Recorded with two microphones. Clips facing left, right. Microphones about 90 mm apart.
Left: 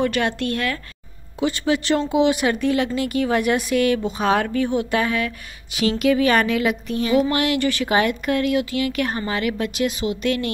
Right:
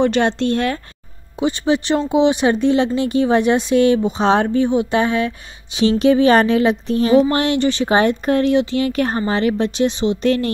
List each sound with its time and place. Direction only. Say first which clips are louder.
0.0 s speech: right 5 dB; 25° right (ahead or behind)